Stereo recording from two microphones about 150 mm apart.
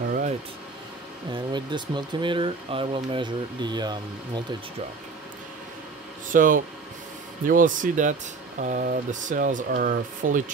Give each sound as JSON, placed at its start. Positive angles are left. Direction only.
{"t": 1.3, "sound": "speech", "side_deg": -30}
{"t": 6.2, "sound": "speech", "side_deg": -65}